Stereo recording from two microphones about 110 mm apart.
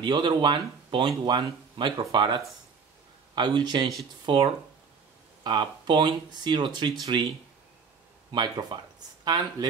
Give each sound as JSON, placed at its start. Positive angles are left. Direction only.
{"t": 0.0, "sound": "a man's voice", "side_deg": -45}